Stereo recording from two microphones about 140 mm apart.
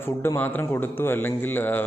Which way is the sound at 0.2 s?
15° left (ahead or behind).